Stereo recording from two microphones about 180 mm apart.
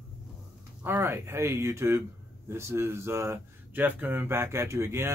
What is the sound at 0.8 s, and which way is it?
Speech, 10° right (ahead or behind).